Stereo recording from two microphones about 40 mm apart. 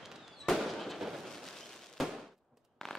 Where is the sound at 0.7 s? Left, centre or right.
Centre.